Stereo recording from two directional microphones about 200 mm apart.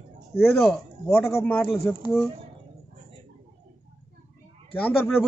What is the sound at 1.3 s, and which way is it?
Speech, 10° left (ahead or behind).